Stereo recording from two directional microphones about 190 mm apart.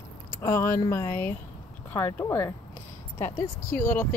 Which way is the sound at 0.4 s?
15° left (ahead or behind).